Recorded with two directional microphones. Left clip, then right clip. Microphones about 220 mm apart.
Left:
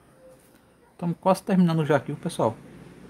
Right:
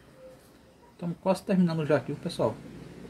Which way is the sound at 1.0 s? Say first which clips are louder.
Left 6 dB; 40° left (ahead or behind).